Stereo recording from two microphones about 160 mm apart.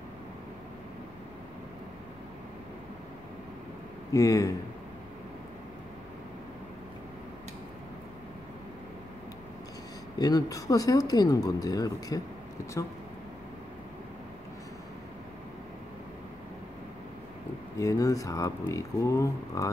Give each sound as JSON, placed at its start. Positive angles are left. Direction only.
{"t": 4.1, "sound": "speech", "side_deg": 20}
{"t": 10.1, "sound": "speech", "side_deg": 25}
{"t": 17.7, "sound": "speech", "side_deg": 20}